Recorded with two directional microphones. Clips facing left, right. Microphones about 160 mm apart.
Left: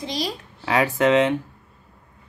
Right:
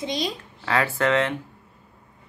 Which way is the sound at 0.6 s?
15° left (ahead or behind).